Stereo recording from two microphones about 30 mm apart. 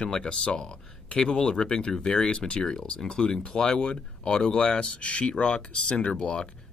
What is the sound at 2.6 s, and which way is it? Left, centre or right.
Speech, left.